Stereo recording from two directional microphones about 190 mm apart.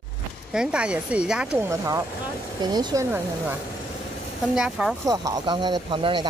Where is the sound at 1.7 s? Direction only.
15° right (ahead or behind).